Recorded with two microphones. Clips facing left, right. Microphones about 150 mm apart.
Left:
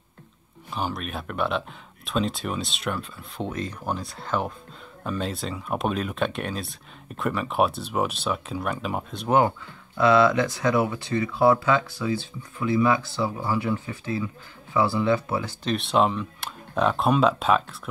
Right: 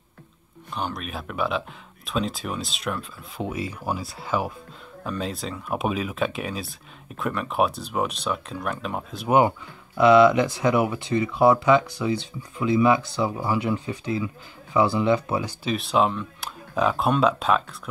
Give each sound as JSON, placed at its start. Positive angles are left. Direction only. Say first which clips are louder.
{"t": 0.7, "sound": "speech", "louder": "left 1 dB", "side_deg": 5}
{"t": 9.9, "sound": "speech", "louder": "right 3 dB", "side_deg": -15}
{"t": 15.7, "sound": "speech", "louder": "even", "side_deg": 0}